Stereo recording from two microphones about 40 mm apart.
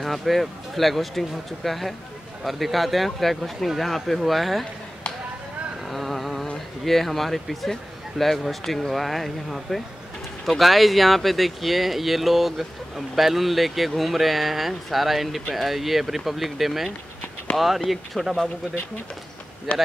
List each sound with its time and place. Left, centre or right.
0.0 s speech: centre
5.9 s insect: centre
6.8 s speech: centre
19.7 s speech: left